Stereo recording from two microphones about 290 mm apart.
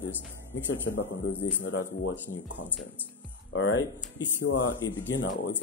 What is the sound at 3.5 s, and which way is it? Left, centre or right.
Speech, left.